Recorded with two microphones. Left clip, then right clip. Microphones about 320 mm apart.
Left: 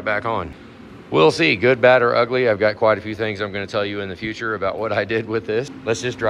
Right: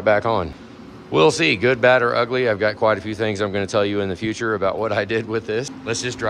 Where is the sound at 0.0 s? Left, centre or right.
Centre.